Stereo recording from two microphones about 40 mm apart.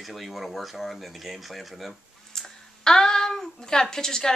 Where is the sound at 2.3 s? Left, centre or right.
Centre.